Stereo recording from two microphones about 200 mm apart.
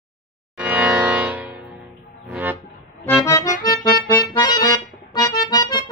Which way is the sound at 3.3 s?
15° left (ahead or behind).